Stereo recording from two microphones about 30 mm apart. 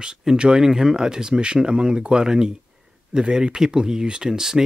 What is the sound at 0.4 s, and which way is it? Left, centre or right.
Speech, right.